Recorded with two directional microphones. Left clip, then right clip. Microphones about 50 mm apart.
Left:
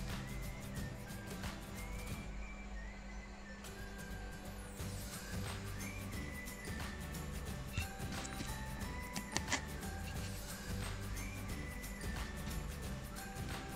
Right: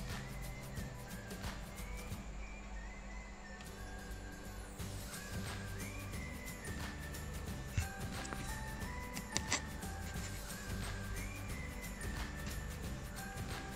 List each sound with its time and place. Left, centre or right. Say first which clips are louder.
9.1 s music: even; centre